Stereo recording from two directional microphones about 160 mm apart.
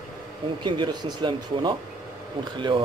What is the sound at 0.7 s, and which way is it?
Speech, 30° right (ahead or behind).